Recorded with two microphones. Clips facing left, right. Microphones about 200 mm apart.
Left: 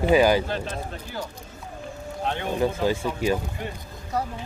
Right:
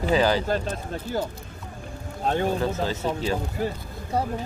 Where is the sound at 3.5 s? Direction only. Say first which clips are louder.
Right 6 dB; 35° right (ahead or behind).